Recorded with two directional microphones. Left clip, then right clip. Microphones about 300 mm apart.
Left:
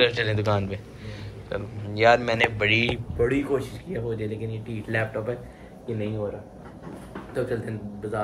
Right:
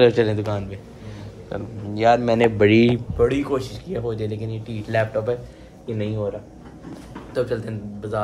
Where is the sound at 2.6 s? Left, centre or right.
Right.